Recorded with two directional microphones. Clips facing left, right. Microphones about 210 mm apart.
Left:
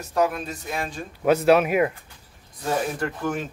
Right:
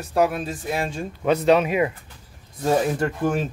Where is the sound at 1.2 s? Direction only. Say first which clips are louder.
Even; 5° left (ahead or behind).